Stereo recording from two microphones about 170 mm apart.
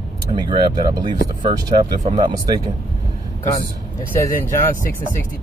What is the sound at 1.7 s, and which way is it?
Speech, 35° right (ahead or behind).